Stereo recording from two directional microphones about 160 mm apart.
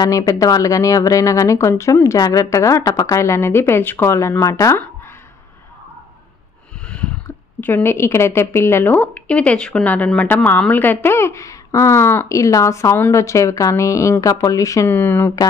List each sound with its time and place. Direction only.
0.0 s speech: 25° left (ahead or behind)
7.6 s a woman's voice: 15° left (ahead or behind)